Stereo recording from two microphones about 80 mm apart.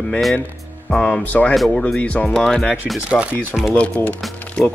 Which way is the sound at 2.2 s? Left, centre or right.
Centre.